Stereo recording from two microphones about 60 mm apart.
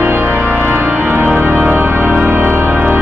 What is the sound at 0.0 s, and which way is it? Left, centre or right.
Organ, right.